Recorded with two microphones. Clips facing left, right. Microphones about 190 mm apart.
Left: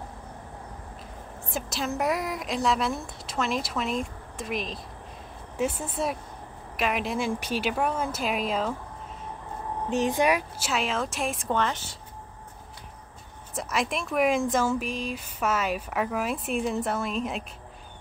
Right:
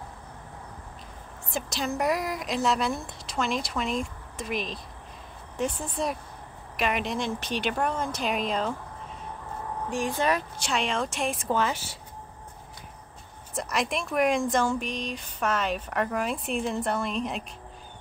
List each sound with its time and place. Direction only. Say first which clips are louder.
1.5 s speech: even; centre (ahead or behind)
9.8 s speech: left 3 dB; 20° left (ahead or behind); by 12.0 s 5° right (ahead or behind)
13.6 s speech: even; centre (ahead or behind)